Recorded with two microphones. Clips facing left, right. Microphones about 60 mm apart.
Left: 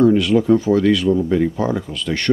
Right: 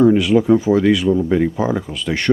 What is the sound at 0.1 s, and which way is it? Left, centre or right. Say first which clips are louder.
Speech: right 1 dB; centre.